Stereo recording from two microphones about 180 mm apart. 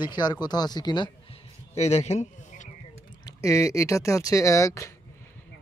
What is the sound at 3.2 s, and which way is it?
Speech, 20° left (ahead or behind).